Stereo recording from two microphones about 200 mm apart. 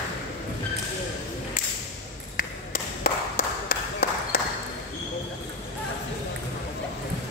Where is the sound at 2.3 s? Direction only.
45° left (ahead or behind).